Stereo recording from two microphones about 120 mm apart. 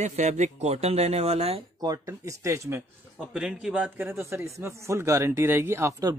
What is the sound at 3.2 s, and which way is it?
A man's voice, 10° right (ahead or behind).